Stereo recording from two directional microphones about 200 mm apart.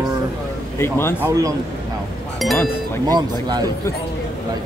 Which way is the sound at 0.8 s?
10° left (ahead or behind).